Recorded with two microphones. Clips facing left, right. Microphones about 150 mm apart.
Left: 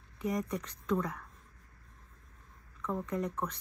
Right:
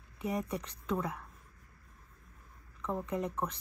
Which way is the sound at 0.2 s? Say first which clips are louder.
Left 1 dB; 10° right (ahead or behind).